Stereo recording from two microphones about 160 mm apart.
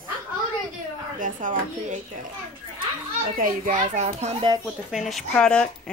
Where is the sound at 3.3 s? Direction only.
60° right (ahead or behind).